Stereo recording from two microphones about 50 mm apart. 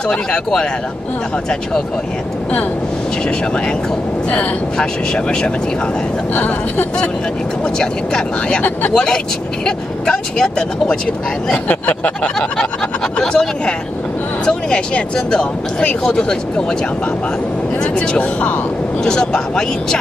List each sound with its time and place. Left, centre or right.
0.1 s speech: centre
4.3 s speech: centre
6.3 s speech: left
7.8 s speech: centre
11.5 s a sound: left
13.2 s speech: centre
17.9 s a sound: left
19.0 s speech: centre